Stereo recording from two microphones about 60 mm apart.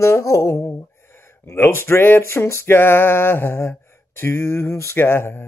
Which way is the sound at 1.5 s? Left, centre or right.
Left.